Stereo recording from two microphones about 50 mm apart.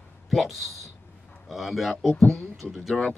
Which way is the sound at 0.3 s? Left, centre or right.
Centre.